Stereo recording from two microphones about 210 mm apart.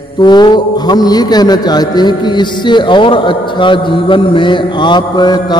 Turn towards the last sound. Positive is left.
turn(degrees=20)  # may be behind; listen again after turning